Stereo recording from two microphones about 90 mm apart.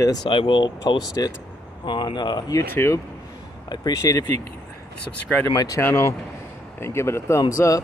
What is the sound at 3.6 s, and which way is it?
Speech, 50° left (ahead or behind).